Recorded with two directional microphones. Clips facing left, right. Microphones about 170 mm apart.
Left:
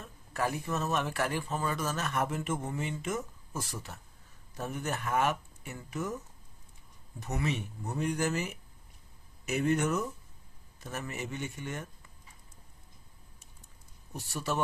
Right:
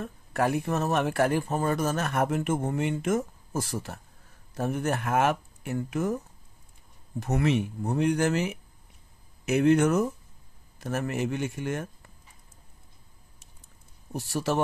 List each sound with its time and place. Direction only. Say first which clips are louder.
0.0 s speech: right 6 dB; 65° right (ahead or behind)
14.3 s speech: right 6 dB; 70° right (ahead or behind)